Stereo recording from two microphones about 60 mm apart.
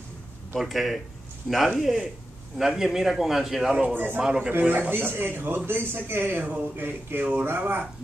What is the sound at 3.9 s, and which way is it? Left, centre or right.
Speech, right.